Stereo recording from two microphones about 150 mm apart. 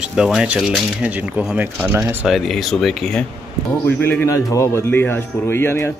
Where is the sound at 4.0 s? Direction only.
15° left (ahead or behind).